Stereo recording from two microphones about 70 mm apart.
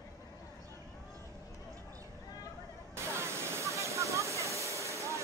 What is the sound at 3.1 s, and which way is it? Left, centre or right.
Vehicle, right.